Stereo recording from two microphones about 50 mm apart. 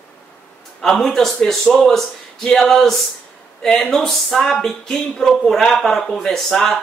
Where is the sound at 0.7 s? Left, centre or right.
Centre.